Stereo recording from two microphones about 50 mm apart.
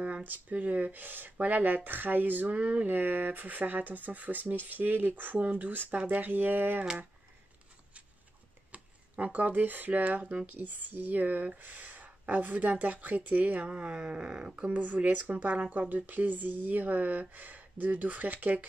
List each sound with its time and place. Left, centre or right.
0.0 s speech: right
8.7 s speech: right